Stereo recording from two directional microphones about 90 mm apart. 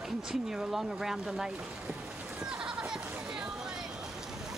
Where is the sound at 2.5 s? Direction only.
10° right (ahead or behind).